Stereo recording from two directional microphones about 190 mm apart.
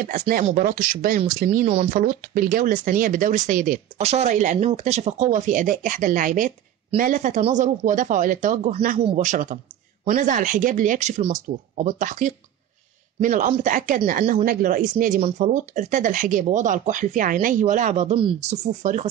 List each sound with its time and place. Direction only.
0.0 s speech: 45° right (ahead or behind)
4.0 s speech: 35° right (ahead or behind)